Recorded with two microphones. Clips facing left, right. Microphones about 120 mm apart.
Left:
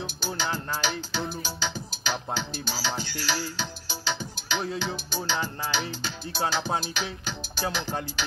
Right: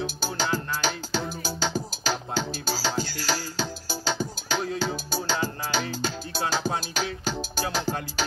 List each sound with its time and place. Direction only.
0.0 s music: 40° right (ahead or behind)